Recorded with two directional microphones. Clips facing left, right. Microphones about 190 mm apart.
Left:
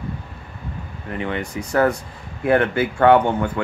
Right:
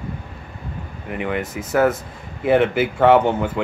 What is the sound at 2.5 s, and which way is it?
Speech, 20° right (ahead or behind).